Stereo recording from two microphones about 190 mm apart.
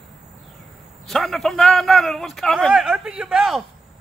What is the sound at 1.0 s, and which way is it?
Speech, centre (ahead or behind).